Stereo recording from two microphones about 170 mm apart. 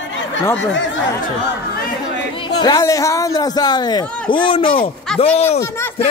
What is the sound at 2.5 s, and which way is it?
Speech, 25° left (ahead or behind).